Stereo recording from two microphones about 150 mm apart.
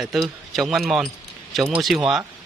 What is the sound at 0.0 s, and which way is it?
Speech, centre (ahead or behind).